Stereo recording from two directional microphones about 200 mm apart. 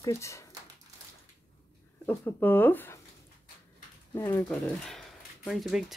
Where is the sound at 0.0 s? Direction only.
15° left (ahead or behind).